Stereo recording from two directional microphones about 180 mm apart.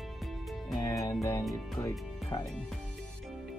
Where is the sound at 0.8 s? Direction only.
20° left (ahead or behind).